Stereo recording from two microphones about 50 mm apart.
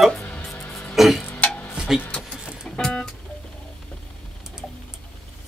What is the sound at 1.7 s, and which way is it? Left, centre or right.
Vehicle, centre.